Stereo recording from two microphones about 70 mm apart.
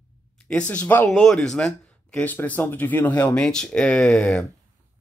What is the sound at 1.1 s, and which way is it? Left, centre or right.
Speech, centre.